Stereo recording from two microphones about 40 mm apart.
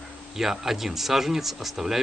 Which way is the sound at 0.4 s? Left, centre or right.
Centre.